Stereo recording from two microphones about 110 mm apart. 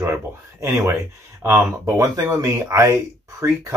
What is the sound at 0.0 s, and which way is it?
Speech, 20° right (ahead or behind).